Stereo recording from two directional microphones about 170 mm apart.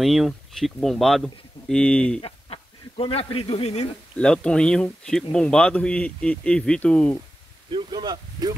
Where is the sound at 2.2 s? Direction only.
35° left (ahead or behind).